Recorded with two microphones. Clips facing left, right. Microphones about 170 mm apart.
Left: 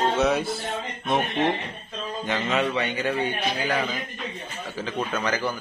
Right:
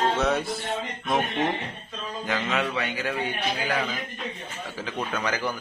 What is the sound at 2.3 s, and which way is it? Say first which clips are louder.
Speech: left 2 dB; centre (ahead or behind).